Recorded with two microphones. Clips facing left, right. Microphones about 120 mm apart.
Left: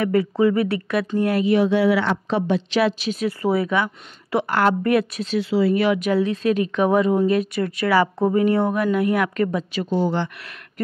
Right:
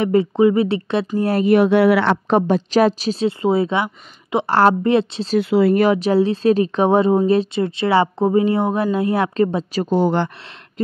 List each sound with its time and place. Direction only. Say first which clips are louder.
0.0 s speech: right 4 dB; 25° right (ahead or behind)
1.4 s speech: right 6 dB; 55° right (ahead or behind); by 4.5 s 20° right (ahead or behind)
4.5 s speech: right 5 dB; 30° right (ahead or behind)
5.3 s speech: right 4 dB; 55° right (ahead or behind)
5.9 s speech: right 4 dB; 30° right (ahead or behind)
9.8 s speech: right 5 dB; 50° right (ahead or behind)